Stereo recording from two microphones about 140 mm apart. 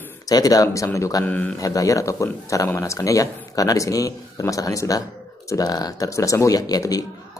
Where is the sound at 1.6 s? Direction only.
25° left (ahead or behind).